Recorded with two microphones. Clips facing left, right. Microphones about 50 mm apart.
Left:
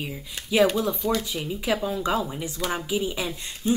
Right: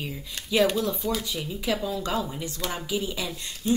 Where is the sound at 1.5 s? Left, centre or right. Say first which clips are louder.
Left 2 dB; left.